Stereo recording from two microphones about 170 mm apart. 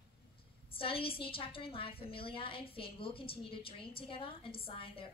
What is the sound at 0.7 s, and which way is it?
A woman's voice, 30° left (ahead or behind).